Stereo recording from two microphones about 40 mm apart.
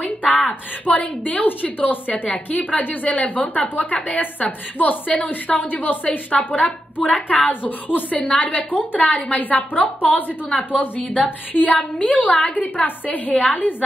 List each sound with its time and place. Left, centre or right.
0.0 s a sound: left
0.8 s a woman's voice: left
4.5 s a woman's voice: left